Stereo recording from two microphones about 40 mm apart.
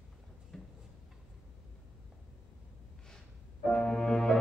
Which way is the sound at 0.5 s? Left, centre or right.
Centre.